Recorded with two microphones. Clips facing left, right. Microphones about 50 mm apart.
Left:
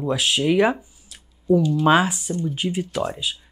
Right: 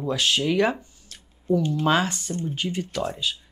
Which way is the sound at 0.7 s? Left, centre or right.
Centre.